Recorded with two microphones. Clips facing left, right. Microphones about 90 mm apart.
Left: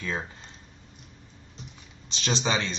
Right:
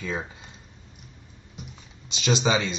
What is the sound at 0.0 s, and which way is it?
Speech, 15° right (ahead or behind).